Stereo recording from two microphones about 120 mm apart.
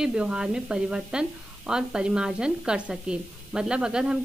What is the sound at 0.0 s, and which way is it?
A woman's voice, 10° right (ahead or behind).